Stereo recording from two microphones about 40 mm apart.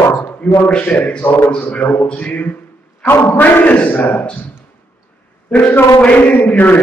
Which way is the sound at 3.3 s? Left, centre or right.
Left.